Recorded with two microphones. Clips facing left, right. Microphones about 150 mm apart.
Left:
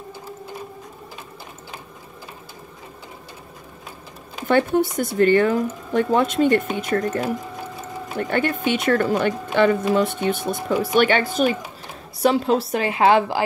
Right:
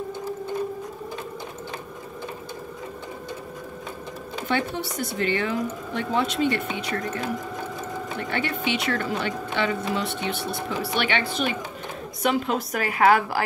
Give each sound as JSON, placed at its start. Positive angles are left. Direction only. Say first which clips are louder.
{"t": 4.5, "sound": "a woman's voice", "louder": "left 9 dB", "side_deg": 50}